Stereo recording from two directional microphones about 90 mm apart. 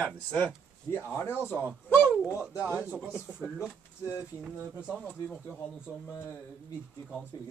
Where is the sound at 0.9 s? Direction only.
30° left (ahead or behind).